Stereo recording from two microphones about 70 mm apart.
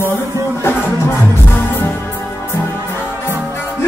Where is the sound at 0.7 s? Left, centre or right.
Left.